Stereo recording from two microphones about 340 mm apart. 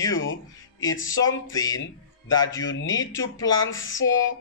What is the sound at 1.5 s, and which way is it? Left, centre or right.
Speech, centre.